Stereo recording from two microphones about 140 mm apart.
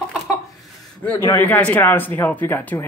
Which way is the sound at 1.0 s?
15° left (ahead or behind).